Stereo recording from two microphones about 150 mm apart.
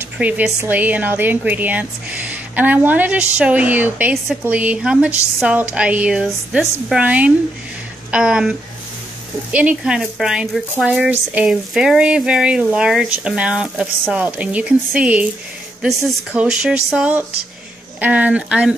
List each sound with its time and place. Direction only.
0.2 s speech: 10° right (ahead or behind)